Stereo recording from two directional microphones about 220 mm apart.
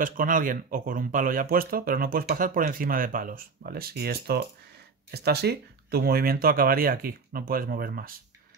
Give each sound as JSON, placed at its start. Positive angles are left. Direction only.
{"t": 0.0, "sound": "speech", "side_deg": -40}